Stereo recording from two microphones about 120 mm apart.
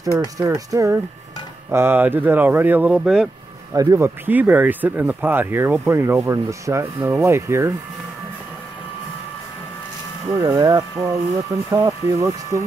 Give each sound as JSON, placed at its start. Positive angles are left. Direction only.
{"t": 0.4, "sound": "speech", "side_deg": -30}
{"t": 3.7, "sound": "speech", "side_deg": -25}
{"t": 10.3, "sound": "speech", "side_deg": -20}
{"t": 10.6, "sound": "speech", "side_deg": -35}